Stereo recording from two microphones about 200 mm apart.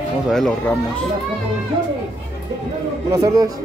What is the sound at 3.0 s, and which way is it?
Speech, 20° right (ahead or behind).